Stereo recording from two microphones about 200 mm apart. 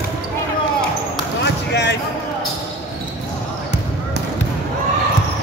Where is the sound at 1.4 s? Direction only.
60° left (ahead or behind).